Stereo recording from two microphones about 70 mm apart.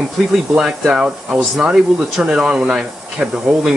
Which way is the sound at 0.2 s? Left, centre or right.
Centre.